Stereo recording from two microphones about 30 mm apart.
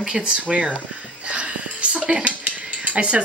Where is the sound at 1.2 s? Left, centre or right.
Right.